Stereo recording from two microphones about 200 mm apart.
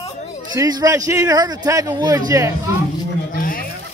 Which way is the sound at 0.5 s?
20° right (ahead or behind).